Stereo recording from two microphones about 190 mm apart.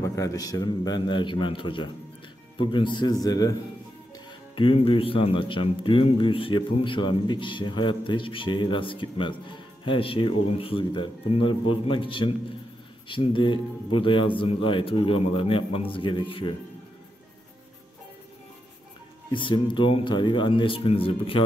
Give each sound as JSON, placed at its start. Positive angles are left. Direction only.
{"t": 0.0, "sound": "a man's voice", "side_deg": 15}
{"t": 4.6, "sound": "a man's voice", "side_deg": 30}
{"t": 19.3, "sound": "a man's voice", "side_deg": 25}